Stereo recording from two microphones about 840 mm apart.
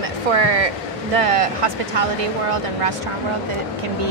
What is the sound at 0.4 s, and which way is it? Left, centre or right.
Speech, right.